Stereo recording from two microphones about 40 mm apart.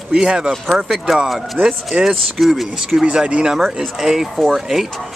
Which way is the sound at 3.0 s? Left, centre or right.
Centre.